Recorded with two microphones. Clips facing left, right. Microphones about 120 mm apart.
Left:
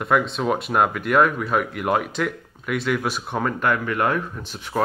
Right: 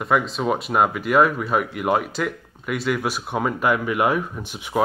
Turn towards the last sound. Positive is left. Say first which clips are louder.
# right 1 dB
turn(degrees=-15)  # may be behind; listen again after turning